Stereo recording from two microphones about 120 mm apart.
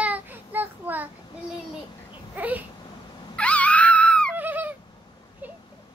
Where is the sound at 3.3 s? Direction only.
10° left (ahead or behind).